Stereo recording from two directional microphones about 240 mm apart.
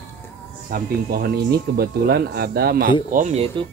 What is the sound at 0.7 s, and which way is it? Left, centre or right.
Speech, right.